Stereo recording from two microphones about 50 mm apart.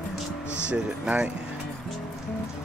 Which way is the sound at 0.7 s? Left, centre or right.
Right.